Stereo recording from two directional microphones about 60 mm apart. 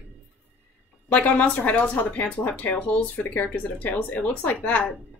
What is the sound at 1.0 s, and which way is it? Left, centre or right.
Speech, left.